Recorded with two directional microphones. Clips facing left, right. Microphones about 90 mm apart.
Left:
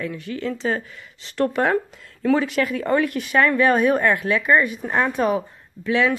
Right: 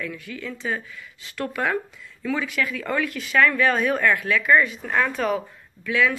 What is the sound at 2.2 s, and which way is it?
Speech, 50° left (ahead or behind).